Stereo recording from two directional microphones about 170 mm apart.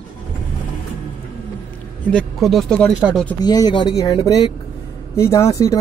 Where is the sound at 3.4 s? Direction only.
25° left (ahead or behind).